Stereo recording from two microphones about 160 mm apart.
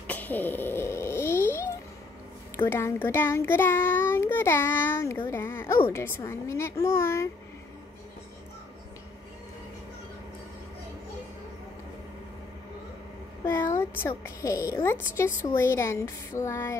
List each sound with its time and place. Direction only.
0.0 s a sound: 10° left (ahead or behind)
2.5 s child singing: 15° left (ahead or behind)
13.7 s child singing: 15° left (ahead or behind)